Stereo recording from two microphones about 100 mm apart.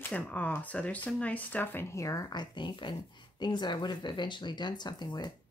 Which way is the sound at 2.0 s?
35° left (ahead or behind).